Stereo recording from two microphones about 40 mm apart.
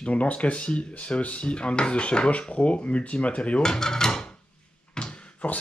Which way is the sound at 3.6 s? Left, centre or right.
Centre.